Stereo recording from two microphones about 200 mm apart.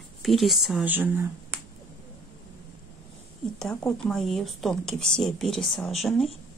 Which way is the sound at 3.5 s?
5° left (ahead or behind).